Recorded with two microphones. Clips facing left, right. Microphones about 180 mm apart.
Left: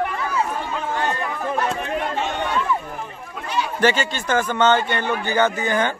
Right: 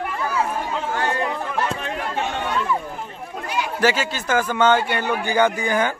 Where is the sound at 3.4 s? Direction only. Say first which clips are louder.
Left 1 dB; 10° right (ahead or behind).